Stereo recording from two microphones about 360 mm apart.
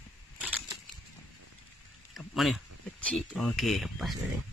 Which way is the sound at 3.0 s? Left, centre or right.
Centre.